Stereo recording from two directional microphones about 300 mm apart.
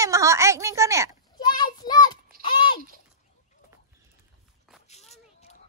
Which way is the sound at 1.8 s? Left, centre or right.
Centre.